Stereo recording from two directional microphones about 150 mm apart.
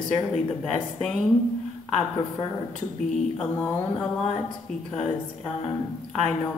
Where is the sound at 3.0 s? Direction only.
Centre (ahead or behind).